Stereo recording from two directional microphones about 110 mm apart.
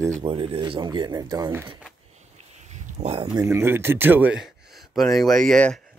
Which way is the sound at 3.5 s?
20° right (ahead or behind).